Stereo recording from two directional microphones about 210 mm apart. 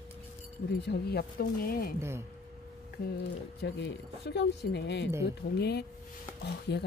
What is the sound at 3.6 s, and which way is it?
Speech, 55° left (ahead or behind).